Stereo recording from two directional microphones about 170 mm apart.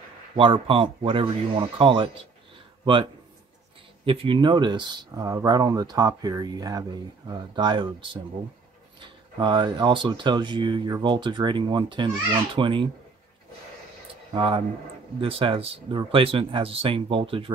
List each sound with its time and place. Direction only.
0.4 s speech: 30° right (ahead or behind)
14.3 s speech: 30° right (ahead or behind)